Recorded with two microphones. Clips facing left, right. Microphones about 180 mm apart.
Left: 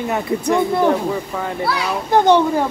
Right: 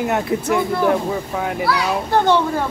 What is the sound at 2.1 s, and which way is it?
Speech, 20° left (ahead or behind).